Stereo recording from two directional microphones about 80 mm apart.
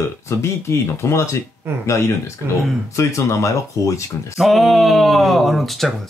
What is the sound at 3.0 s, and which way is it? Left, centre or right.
Speech, left.